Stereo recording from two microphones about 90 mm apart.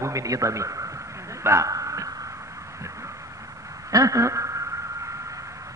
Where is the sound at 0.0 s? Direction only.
40° right (ahead or behind).